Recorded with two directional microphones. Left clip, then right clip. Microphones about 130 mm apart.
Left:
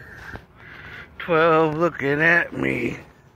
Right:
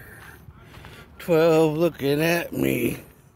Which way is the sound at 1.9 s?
60° right (ahead or behind).